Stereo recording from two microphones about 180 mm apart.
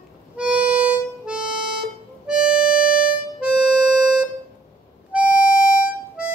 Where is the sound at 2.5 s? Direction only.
50° left (ahead or behind).